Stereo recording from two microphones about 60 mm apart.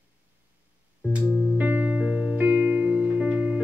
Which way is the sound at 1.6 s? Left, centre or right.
Right.